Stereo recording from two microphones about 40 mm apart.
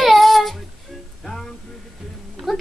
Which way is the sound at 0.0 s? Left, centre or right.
Centre.